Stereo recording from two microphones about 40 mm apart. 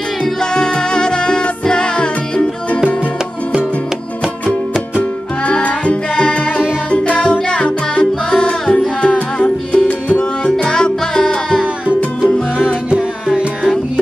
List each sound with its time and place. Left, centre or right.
0.2 s music: centre
5.4 s music: left
12.3 s music: left